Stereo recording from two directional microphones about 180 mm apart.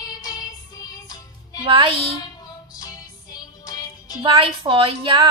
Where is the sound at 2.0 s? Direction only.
20° left (ahead or behind).